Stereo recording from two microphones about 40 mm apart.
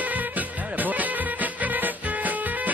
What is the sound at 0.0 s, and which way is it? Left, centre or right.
Music, right.